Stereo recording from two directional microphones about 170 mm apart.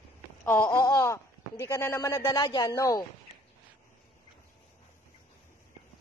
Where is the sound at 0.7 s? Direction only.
20° left (ahead or behind).